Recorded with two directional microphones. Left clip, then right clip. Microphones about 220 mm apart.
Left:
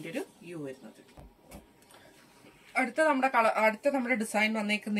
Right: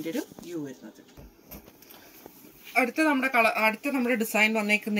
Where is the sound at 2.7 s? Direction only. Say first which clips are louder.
Right 3 dB; 15° left (ahead or behind).